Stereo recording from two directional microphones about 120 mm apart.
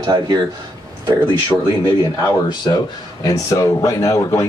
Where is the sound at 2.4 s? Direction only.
35° left (ahead or behind).